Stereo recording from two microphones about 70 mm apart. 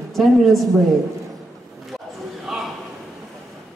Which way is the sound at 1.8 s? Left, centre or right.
Centre.